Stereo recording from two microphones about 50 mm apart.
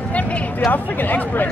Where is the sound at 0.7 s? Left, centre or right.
Left.